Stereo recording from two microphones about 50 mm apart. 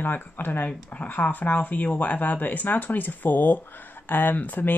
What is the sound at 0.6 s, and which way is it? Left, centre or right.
Speech, left.